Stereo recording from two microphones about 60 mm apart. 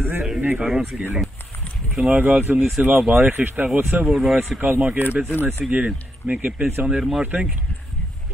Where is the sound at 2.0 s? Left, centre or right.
Right.